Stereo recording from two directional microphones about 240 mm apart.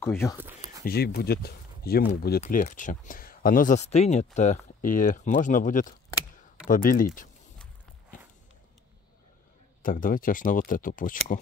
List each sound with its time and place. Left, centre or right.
0.0 s speech: centre
0.8 s speech: left
9.8 s speech: left